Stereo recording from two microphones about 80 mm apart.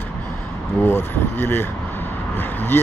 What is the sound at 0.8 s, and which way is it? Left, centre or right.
Speech, left.